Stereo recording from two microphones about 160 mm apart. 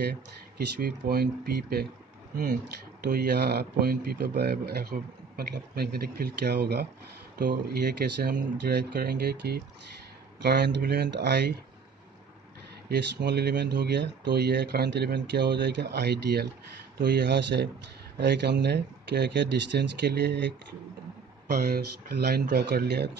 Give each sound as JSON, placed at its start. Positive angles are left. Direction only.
{"t": 0.0, "sound": "speech", "side_deg": -90}
{"t": 12.8, "sound": "speech", "side_deg": -90}
{"t": 21.5, "sound": "speech", "side_deg": -90}